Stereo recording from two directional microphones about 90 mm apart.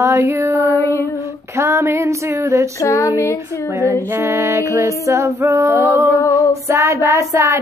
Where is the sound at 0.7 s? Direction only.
35° left (ahead or behind).